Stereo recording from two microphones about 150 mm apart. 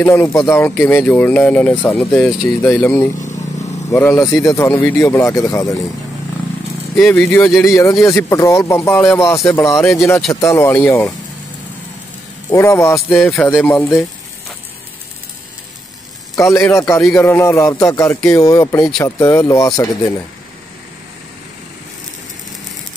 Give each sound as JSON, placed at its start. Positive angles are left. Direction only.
{"t": 0.0, "sound": "speech", "side_deg": 20}
{"t": 7.0, "sound": "speech", "side_deg": 10}
{"t": 7.6, "sound": "speech", "side_deg": 20}
{"t": 9.8, "sound": "speech", "side_deg": 0}
{"t": 10.3, "sound": "speech", "side_deg": 20}
{"t": 12.4, "sound": "speech", "side_deg": 20}
{"t": 13.1, "sound": "speech", "side_deg": 5}
{"t": 13.5, "sound": "speech", "side_deg": 15}
{"t": 16.3, "sound": "a man's voice", "side_deg": 20}
{"t": 18.8, "sound": "speech", "side_deg": 5}
{"t": 19.0, "sound": "speech", "side_deg": 20}